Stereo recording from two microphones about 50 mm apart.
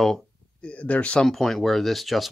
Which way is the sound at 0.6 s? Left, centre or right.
Left.